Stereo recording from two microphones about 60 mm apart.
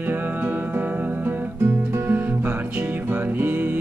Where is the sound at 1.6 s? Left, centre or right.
Right.